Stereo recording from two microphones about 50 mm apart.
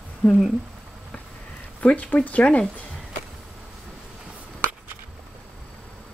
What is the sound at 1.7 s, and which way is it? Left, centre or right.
Speech, left.